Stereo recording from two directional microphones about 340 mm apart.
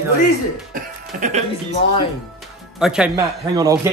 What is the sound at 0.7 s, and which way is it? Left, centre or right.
Speech, right.